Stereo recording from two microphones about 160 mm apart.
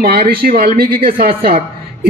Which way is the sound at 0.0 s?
70° right (ahead or behind).